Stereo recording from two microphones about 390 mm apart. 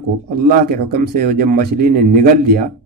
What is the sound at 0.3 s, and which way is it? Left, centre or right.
A man's voice, right.